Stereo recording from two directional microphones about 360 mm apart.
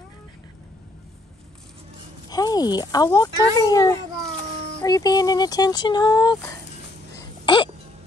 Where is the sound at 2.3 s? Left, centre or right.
Centre.